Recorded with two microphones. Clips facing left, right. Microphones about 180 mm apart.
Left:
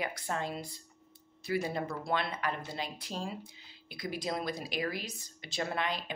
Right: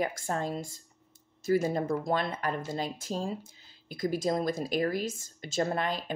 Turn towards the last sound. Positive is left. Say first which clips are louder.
# right 4 dB
turn(degrees=-45)  # may be behind; listen again after turning